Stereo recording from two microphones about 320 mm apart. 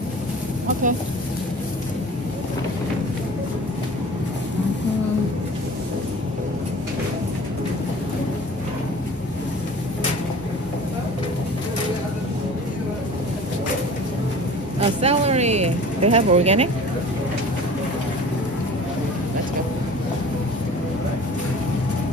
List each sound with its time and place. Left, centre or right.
14.8 s vehicle: centre